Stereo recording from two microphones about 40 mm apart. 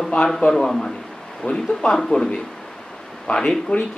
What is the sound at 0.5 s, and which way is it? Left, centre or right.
Speech, centre.